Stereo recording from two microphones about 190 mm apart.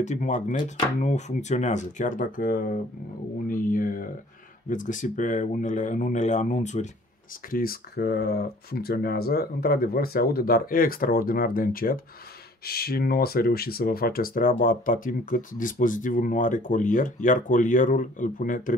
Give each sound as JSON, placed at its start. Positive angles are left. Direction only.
{"t": 0.0, "sound": "speech", "side_deg": 40}
{"t": 3.4, "sound": "a sound", "side_deg": 45}
{"t": 4.6, "sound": "speech", "side_deg": 45}
{"t": 7.4, "sound": "speech", "side_deg": 50}